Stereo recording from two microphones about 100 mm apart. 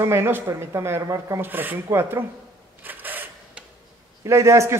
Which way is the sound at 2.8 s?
20° right (ahead or behind).